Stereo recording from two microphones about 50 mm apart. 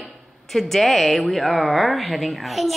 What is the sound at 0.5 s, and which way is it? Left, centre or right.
A woman's voice, centre.